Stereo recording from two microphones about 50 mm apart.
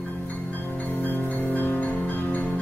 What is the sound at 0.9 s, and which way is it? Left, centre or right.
Music, left.